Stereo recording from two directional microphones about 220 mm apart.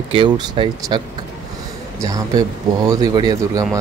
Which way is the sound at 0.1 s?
25° right (ahead or behind).